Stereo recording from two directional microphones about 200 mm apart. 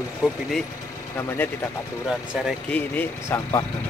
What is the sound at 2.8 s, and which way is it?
Speech, 10° left (ahead or behind).